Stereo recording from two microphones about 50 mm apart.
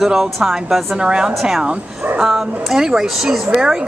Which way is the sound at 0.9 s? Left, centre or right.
Centre.